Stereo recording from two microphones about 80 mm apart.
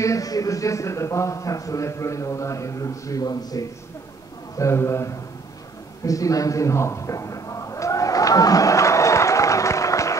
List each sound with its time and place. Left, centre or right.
0.0 s a man's voice: left
4.6 s a man's voice: left
6.0 s a sound: left